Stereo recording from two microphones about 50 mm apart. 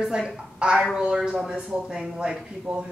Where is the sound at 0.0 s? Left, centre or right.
Centre.